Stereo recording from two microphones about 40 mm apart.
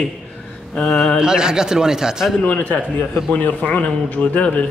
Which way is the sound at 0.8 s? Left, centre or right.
Centre.